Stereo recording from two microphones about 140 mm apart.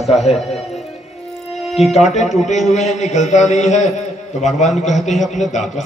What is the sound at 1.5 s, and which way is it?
Music, centre (ahead or behind).